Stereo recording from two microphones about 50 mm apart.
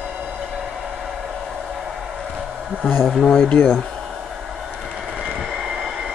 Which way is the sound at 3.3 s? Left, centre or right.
Left.